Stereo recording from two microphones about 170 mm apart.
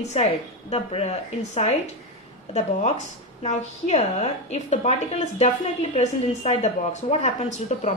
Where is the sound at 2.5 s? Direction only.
40° left (ahead or behind).